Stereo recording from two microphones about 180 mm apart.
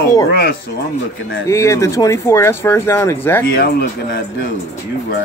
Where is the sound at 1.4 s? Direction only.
15° left (ahead or behind).